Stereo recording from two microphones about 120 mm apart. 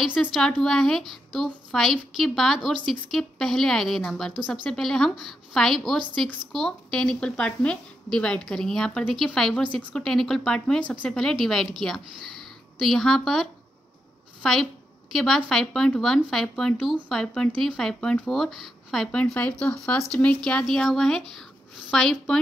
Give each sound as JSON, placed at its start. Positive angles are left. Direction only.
{"t": 0.3, "sound": "a woman's voice", "side_deg": 5}